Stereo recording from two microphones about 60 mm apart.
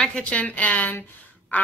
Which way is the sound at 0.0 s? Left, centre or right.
Centre.